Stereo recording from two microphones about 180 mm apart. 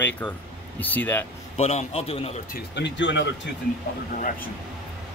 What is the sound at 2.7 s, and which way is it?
Speech, 80° left.